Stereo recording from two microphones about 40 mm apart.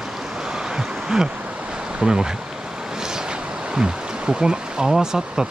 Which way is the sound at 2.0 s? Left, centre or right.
Centre.